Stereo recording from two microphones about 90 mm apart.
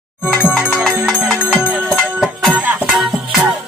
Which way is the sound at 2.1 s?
5° right (ahead or behind).